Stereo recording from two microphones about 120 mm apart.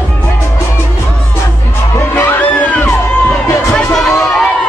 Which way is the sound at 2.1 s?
15° left (ahead or behind).